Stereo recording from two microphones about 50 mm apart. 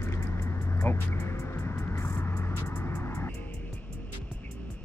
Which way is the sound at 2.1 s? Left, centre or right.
Left.